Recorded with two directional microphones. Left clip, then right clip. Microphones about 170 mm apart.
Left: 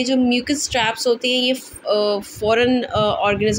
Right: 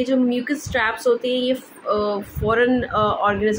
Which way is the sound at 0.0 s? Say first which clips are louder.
Left 2 dB; 30° left (ahead or behind).